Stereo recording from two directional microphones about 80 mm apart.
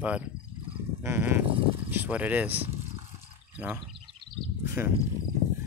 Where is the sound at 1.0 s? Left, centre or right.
Right.